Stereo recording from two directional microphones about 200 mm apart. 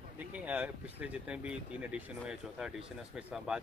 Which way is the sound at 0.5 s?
5° right (ahead or behind).